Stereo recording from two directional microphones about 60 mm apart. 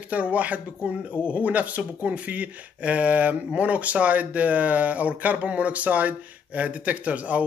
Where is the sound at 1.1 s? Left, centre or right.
Left.